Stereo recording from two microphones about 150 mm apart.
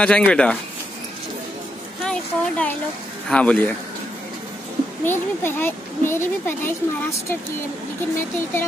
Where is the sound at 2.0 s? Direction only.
10° left (ahead or behind).